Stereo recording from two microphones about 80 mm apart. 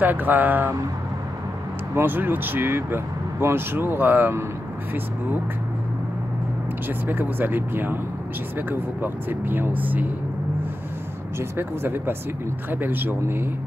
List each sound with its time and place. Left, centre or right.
0.0 s speech: right
2.0 s speech: right
6.9 s speech: right
11.3 s speech: right